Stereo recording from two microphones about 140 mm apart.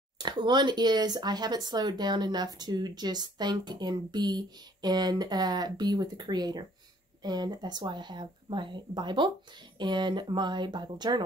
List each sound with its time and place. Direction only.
0.2 s speech: 30° right (ahead or behind)